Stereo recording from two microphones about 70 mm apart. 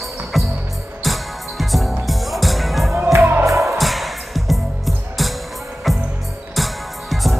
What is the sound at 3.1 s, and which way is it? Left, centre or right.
Music, right.